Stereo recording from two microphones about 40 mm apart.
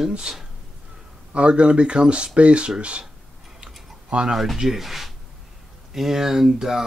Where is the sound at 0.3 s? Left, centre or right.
Right.